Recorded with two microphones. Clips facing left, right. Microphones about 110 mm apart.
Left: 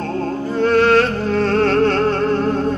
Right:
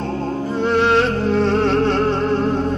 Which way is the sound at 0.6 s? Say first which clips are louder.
Left 3 dB; 20° right (ahead or behind).